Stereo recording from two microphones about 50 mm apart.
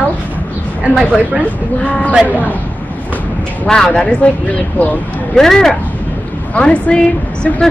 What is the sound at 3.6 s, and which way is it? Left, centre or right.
Speech, centre.